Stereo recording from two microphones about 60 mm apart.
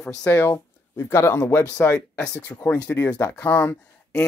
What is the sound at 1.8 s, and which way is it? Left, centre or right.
Speech, centre.